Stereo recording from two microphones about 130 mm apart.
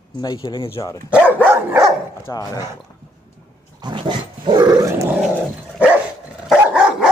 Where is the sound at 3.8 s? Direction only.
35° right (ahead or behind).